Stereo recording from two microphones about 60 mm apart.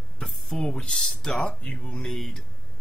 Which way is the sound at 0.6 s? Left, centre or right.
Centre.